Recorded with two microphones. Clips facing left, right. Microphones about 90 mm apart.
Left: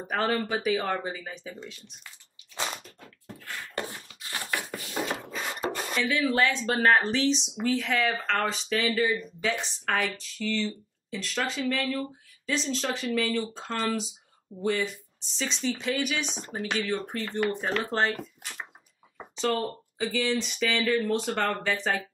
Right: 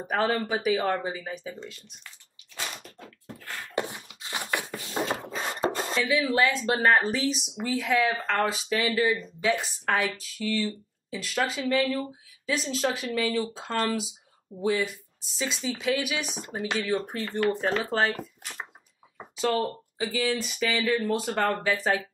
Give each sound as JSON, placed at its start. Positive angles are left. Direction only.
{"t": 0.0, "sound": "speech", "side_deg": -5}
{"t": 3.7, "sound": "a sound", "side_deg": -20}
{"t": 6.0, "sound": "speech", "side_deg": -5}